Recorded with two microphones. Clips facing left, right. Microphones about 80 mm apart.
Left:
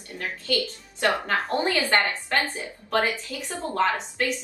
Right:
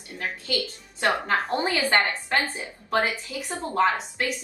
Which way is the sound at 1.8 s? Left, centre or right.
Right.